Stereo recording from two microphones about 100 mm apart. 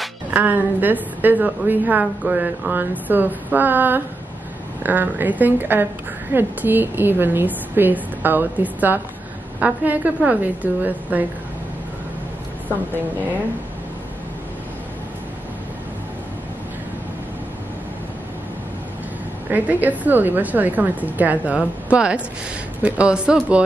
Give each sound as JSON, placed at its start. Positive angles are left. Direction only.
{"t": 0.3, "sound": "a woman's voice", "side_deg": -15}
{"t": 19.5, "sound": "a woman's voice", "side_deg": -15}